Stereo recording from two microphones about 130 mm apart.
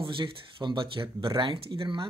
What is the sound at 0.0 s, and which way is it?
Speech, 40° right (ahead or behind).